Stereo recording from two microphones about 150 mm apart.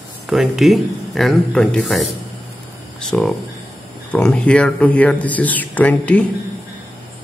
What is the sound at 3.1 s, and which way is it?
Speech, 5° left (ahead or behind).